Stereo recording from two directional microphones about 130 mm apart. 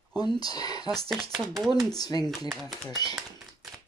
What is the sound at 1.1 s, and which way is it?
Speech, centre (ahead or behind).